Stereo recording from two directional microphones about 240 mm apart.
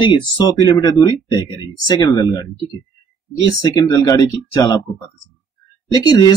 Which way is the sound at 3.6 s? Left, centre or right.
Centre.